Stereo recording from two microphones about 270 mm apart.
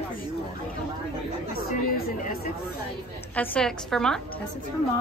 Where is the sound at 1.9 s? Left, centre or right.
Left.